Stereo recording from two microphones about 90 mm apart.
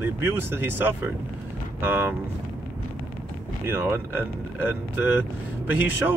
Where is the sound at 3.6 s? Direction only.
25° right (ahead or behind).